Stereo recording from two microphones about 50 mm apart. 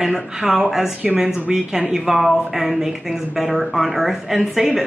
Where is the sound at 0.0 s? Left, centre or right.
Centre.